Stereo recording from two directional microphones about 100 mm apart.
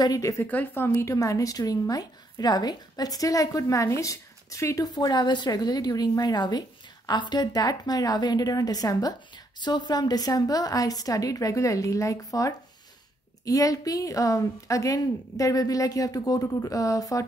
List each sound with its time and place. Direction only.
0.0 s a woman's voice: 35° left (ahead or behind)
0.5 s a woman's voice: 20° left (ahead or behind); by 17.2 s 35° left (ahead or behind)